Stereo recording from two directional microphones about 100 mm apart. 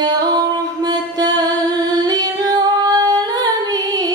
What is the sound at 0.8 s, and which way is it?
Mantra, 40° right (ahead or behind).